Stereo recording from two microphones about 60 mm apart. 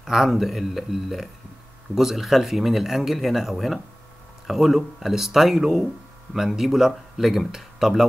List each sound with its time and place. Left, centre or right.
0.0 s speech: centre